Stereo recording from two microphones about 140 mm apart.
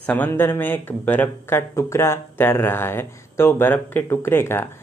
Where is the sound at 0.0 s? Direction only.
10° left (ahead or behind).